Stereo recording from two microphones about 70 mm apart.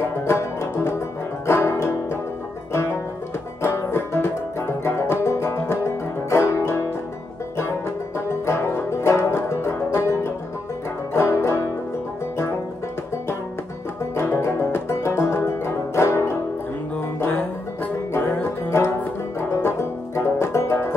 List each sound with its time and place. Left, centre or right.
0.0 s music: left
8.3 s music: left
11.1 s banjo: left
14.1 s music: left
17.2 s music: left
19.6 s banjo: left